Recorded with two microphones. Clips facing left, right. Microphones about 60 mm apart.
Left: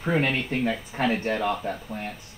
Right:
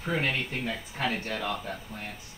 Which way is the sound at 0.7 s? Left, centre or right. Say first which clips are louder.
Left 5 dB; left.